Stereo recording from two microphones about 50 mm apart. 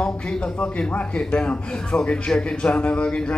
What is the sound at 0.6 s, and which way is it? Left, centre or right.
A man's voice, left.